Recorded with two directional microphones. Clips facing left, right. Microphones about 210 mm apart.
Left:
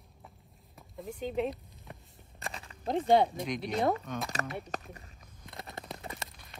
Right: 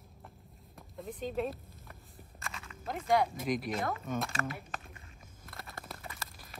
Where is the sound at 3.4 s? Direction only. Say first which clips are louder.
Left 2 dB; 5° right (ahead or behind).